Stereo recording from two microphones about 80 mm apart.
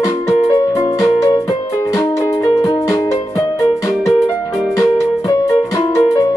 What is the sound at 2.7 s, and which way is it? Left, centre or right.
Music, left.